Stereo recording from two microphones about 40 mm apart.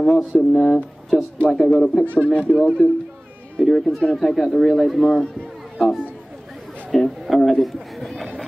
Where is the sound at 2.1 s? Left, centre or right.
Left.